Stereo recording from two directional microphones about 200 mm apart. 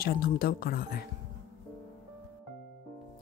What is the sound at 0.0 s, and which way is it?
Speech, 50° left (ahead or behind).